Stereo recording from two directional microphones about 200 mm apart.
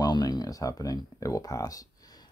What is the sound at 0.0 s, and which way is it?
Speech, 20° left (ahead or behind).